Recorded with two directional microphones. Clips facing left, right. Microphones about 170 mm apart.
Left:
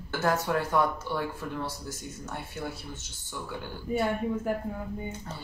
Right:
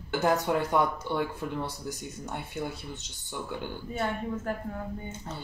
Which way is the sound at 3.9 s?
10° left (ahead or behind).